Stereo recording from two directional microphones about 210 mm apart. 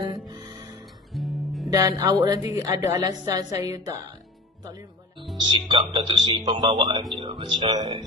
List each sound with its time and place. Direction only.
1.1 s music: centre (ahead or behind)
1.7 s a woman's voice: 15° right (ahead or behind)
5.7 s speech: 25° right (ahead or behind)